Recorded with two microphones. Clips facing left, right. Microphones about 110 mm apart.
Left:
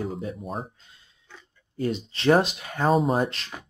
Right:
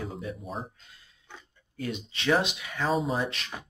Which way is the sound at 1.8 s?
35° left (ahead or behind).